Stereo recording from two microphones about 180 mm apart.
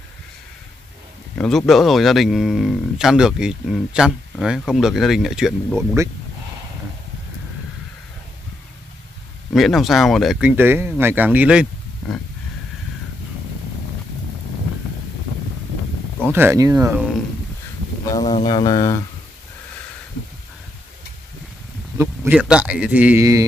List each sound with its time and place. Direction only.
1.3 s speech: 5° left (ahead or behind)
9.5 s speech: centre (ahead or behind)
10.5 s a man's voice: 10° right (ahead or behind)
16.2 s a man's voice: 10° right (ahead or behind)
18.1 s speech: 25° left (ahead or behind)
21.9 s a man's voice: 15° right (ahead or behind)